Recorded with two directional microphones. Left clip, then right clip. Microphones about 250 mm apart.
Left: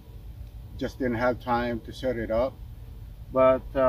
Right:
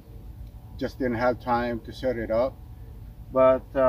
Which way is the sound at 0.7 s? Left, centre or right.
Centre.